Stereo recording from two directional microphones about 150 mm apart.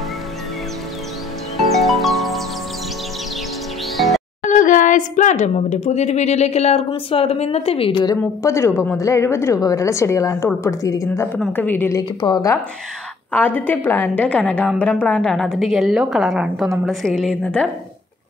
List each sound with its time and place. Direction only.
1.7 s music: centre (ahead or behind)
3.9 s music: centre (ahead or behind)
4.5 s a woman's voice: 60° left (ahead or behind); by 8.1 s 40° left (ahead or behind)
8.1 s a woman's voice: 20° left (ahead or behind)
11.3 s a woman's voice: 10° left (ahead or behind)
12.2 s a woman's voice: 25° left (ahead or behind)
13.3 s a woman's voice: 10° left (ahead or behind)